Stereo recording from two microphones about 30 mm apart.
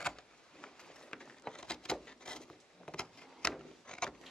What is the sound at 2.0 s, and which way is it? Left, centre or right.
Wood, left.